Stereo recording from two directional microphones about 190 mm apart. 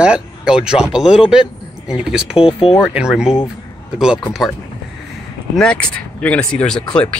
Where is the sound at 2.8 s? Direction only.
5° right (ahead or behind).